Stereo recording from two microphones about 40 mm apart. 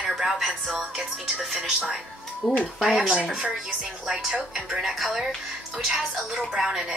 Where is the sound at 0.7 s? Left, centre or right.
Centre.